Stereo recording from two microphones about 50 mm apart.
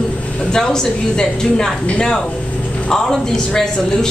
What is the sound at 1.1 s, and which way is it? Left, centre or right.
Speech, centre.